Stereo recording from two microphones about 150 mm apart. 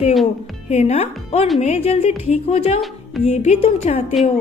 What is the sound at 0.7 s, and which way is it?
A woman's voice, 45° left (ahead or behind).